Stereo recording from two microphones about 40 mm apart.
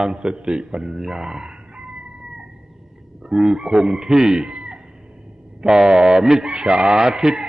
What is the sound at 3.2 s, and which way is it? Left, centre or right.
Speech, centre.